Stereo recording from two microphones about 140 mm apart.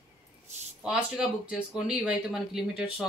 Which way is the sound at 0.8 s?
5° right (ahead or behind).